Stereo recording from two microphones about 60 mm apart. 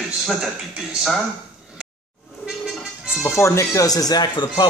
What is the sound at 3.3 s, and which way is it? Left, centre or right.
Speech, left.